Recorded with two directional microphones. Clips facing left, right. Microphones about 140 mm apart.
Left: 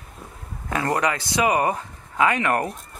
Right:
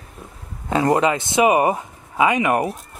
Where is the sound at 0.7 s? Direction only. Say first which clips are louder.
Right 6 dB; 20° right (ahead or behind).